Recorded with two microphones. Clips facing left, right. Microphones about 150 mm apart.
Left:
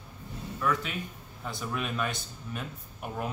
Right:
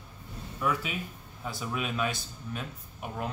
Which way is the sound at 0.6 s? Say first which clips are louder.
Even; 10° right (ahead or behind).